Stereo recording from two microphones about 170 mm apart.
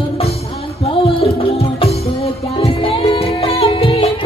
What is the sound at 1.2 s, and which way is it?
Music, 35° left (ahead or behind).